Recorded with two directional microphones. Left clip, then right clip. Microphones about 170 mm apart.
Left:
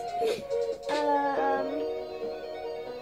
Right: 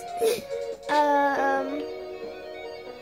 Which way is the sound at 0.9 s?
50° right (ahead or behind).